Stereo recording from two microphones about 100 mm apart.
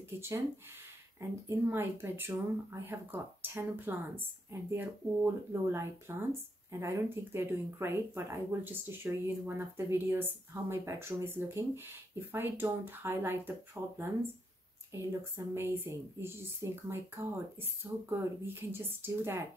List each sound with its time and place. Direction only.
1.7 s speech: 25° right (ahead or behind)